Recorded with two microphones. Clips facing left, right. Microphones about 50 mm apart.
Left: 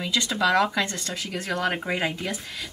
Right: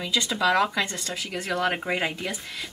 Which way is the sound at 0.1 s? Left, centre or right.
Centre.